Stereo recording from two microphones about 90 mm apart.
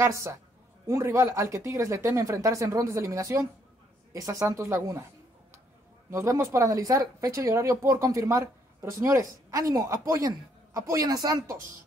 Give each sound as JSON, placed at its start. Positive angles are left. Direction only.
{"t": 0.0, "sound": "speech", "side_deg": -35}
{"t": 6.0, "sound": "speech", "side_deg": -30}